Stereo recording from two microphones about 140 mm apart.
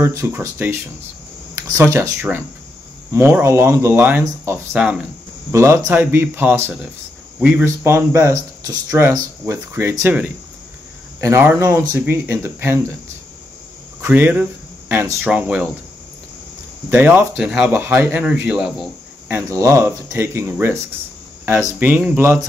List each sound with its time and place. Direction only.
0.0 s speech: 20° right (ahead or behind)
4.7 s speech: 5° right (ahead or behind)
5.5 s speech: 20° right (ahead or behind)
14.0 s speech: 15° right (ahead or behind)
16.9 s speech: 15° right (ahead or behind)
19.2 s speech: 20° right (ahead or behind)